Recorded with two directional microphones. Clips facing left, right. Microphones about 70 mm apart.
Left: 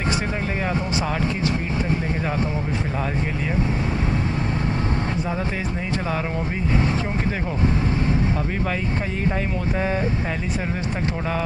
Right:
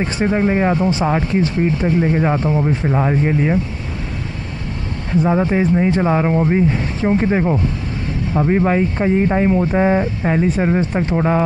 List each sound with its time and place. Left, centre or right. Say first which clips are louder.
0.2 s speech: right 10 dB; right
5.2 s speech: right 10 dB; right